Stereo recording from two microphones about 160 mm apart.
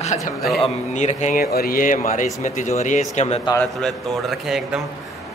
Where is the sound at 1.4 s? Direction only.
70° left (ahead or behind); by 3.4 s 45° left (ahead or behind).